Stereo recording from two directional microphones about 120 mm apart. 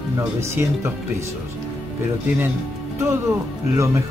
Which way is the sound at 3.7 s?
25° right (ahead or behind).